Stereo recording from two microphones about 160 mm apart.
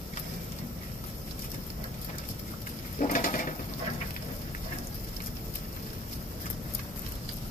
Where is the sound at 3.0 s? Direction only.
55° left (ahead or behind).